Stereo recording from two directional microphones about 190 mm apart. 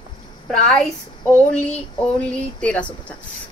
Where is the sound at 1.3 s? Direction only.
5° left (ahead or behind).